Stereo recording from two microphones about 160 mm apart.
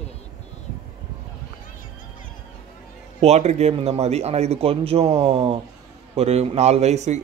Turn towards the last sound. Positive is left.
turn(degrees=-45)  # may be behind; listen again after turning